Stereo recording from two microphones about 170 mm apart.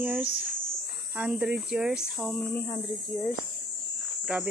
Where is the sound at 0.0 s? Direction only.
10° right (ahead or behind).